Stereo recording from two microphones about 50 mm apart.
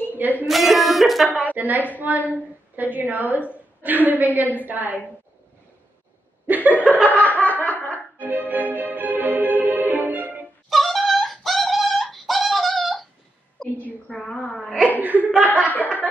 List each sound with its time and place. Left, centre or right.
0.1 s a sound: right
0.5 s music: centre
1.4 s a sound: right
2.0 s a woman's voice: right
6.4 s laughter: right
7.1 s snicker: left
8.2 s music: right
10.7 s a sound: centre
14.0 s a sound: centre
14.4 s hiccup: centre
15.0 s laughter: right
15.4 s chuckle: left